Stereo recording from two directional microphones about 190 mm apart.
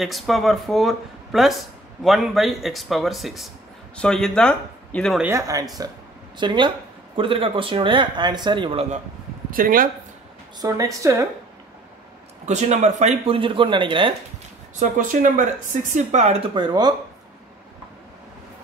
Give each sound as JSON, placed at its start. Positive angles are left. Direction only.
{"t": 0.0, "sound": "speech", "side_deg": 0}
{"t": 5.2, "sound": "a woman's voice", "side_deg": -15}
{"t": 9.5, "sound": "speech", "side_deg": -45}
{"t": 10.6, "sound": "a woman's voice", "side_deg": -15}
{"t": 12.4, "sound": "speech", "side_deg": -35}
{"t": 14.8, "sound": "speech", "side_deg": -45}